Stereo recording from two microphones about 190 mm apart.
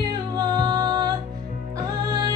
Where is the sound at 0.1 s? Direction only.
20° right (ahead or behind).